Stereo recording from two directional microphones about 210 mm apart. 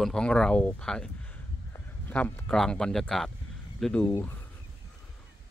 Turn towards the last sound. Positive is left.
turn(degrees=10)  # may be behind; listen again after turning